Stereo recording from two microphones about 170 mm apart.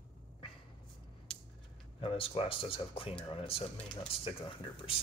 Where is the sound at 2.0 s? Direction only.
35° left (ahead or behind).